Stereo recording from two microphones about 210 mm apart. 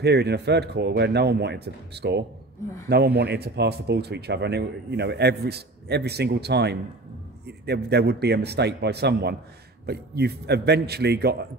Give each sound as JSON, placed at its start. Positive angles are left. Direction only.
{"t": 0.0, "sound": "speech", "side_deg": -50}